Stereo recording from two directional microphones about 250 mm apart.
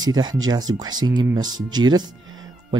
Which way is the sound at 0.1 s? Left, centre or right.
Centre.